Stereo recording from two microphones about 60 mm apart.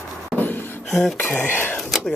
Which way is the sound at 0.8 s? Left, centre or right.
Centre.